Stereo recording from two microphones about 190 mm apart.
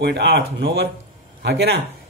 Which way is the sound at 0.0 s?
60° right (ahead or behind).